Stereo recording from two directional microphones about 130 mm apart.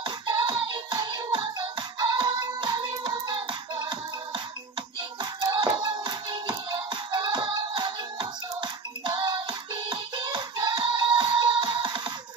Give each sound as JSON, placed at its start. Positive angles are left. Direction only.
{"t": 0.0, "sound": "music", "side_deg": -40}
{"t": 5.5, "sound": "music", "side_deg": -35}